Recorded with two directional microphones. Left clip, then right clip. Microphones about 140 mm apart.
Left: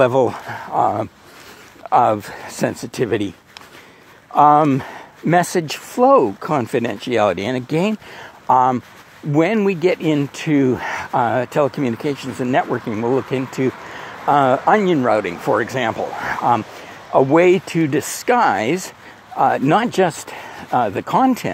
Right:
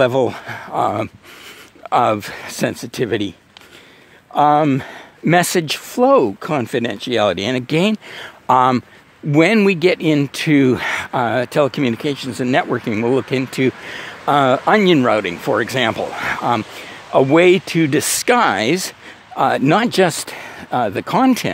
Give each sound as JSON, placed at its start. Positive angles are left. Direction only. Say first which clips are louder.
{"t": 0.0, "sound": "speech", "louder": "even", "side_deg": -25}
{"t": 15.0, "sound": "speech", "louder": "even", "side_deg": -30}